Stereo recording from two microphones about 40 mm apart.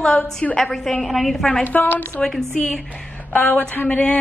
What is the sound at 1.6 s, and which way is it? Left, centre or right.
Speech, left.